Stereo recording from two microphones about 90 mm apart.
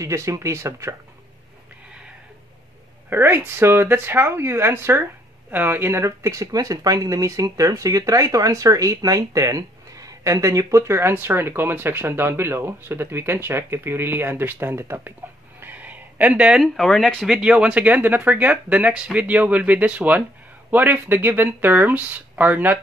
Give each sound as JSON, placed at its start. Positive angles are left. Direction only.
{"t": 0.0, "sound": "speech", "side_deg": -35}
{"t": 3.1, "sound": "speech", "side_deg": -25}
{"t": 15.6, "sound": "a sound", "side_deg": -20}
{"t": 16.6, "sound": "speech", "side_deg": 5}